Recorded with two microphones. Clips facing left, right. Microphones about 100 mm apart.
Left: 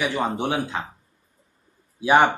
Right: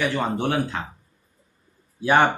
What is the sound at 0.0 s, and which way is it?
Speech, 15° left (ahead or behind).